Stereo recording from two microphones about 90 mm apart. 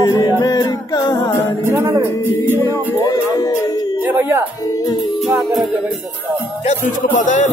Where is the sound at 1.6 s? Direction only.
25° right (ahead or behind).